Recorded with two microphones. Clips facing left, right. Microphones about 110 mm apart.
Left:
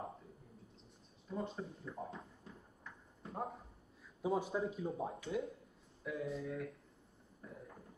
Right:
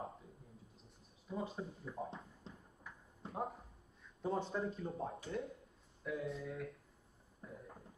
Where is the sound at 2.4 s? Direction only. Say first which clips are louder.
Even; 25° right (ahead or behind).